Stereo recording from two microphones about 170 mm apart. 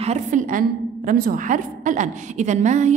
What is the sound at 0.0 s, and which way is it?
A woman's voice, 45° right (ahead or behind).